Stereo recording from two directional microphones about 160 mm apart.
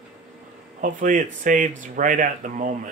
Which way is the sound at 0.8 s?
55° right (ahead or behind).